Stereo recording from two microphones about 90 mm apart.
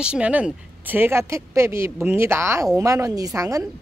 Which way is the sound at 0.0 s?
10° right (ahead or behind).